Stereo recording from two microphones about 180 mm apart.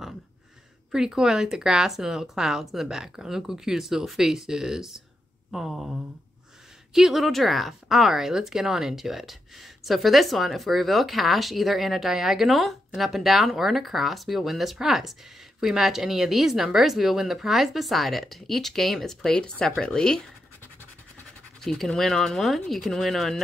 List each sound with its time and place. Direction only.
0.9 s speech: 5° right (ahead or behind)
6.9 s speech: centre (ahead or behind)
21.5 s speech: centre (ahead or behind)